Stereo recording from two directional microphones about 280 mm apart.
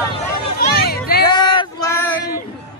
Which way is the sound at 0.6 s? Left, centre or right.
Left.